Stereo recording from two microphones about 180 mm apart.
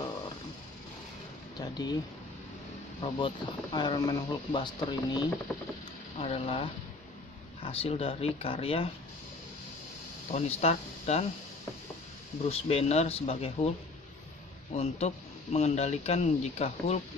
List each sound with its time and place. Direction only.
1.6 s speech: 25° left (ahead or behind)
3.0 s speech: 30° left (ahead or behind)
6.1 s speech: 35° left (ahead or behind)
10.3 s speech: 35° left (ahead or behind)
12.4 s speech: 35° left (ahead or behind)
14.8 s speech: 35° left (ahead or behind)